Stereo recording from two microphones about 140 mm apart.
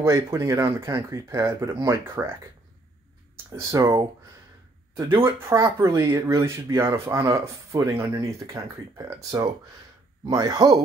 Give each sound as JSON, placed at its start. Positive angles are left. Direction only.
{"t": 0.0, "sound": "speech", "side_deg": -25}
{"t": 3.5, "sound": "speech", "side_deg": -25}
{"t": 5.2, "sound": "speech", "side_deg": -20}